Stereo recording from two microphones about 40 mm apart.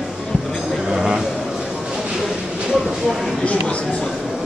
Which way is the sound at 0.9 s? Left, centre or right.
Centre.